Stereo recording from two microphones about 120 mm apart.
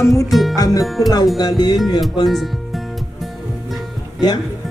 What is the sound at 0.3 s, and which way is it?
Speech, centre (ahead or behind).